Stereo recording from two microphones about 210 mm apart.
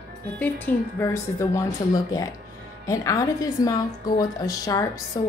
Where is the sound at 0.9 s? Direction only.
15° left (ahead or behind).